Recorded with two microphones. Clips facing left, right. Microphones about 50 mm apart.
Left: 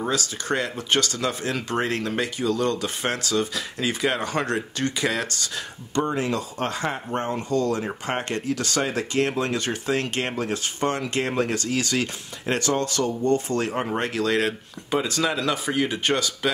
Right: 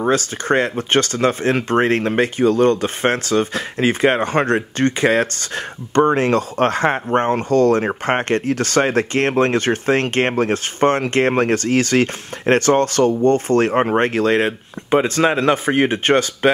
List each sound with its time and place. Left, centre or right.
0.0 s speech: right